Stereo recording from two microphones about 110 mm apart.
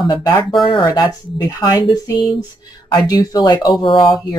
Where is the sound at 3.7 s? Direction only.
45° left (ahead or behind).